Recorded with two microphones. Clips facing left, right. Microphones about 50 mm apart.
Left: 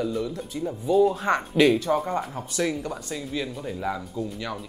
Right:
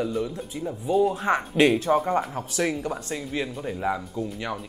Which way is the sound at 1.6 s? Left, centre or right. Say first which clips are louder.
Even; right.